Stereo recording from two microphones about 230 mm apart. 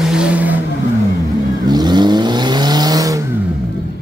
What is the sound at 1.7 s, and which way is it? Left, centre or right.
Vehicle, centre.